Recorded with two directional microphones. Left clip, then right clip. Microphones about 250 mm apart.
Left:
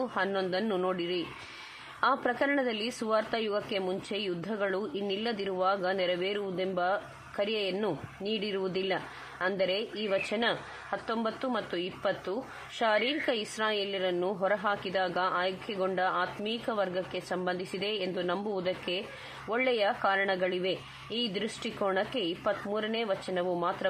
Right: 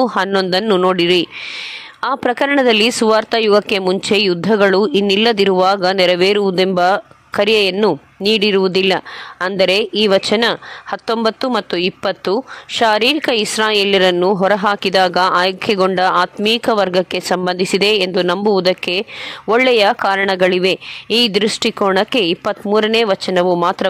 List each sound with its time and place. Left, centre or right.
0.0 s speech: right